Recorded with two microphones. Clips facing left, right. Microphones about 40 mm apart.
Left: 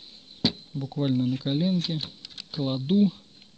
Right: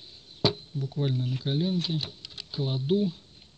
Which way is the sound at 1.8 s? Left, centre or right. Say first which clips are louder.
Left 1 dB; left.